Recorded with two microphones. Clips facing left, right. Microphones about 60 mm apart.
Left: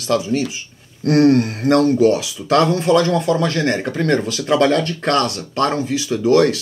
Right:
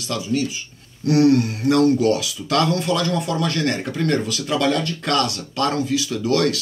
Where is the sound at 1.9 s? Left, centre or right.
Left.